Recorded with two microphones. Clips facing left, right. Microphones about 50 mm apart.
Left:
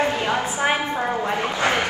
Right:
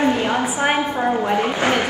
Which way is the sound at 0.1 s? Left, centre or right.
Right.